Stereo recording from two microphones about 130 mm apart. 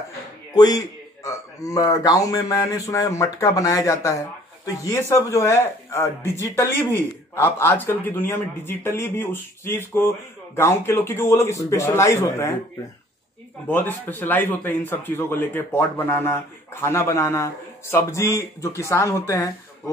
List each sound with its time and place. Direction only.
0.6 s speech: 30° left (ahead or behind)
13.7 s a man's voice: 15° left (ahead or behind)